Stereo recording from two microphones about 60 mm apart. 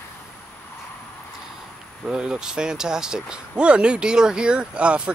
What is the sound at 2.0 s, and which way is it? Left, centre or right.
Speech, centre.